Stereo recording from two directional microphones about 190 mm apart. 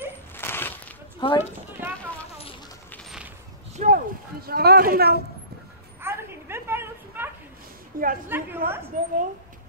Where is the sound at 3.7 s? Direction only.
40° right (ahead or behind).